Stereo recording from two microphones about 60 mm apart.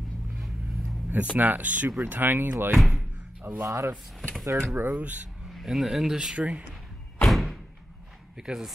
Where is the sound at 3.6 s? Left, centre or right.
Right.